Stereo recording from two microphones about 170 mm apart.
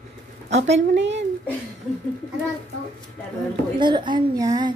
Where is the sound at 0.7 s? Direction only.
90° right.